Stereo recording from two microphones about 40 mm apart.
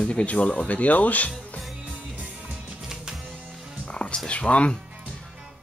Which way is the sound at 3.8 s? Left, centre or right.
Left.